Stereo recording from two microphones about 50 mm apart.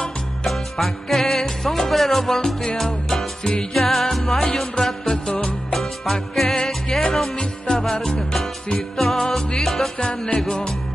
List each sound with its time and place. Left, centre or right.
0.5 s music: centre
9.9 s music: centre